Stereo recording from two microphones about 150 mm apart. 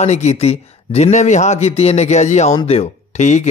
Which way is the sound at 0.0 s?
50° left (ahead or behind).